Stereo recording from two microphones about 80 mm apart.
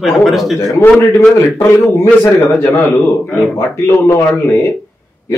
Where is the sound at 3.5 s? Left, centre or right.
Left.